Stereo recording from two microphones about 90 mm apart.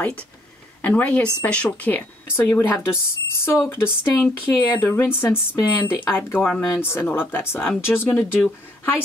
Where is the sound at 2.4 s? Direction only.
30° left (ahead or behind).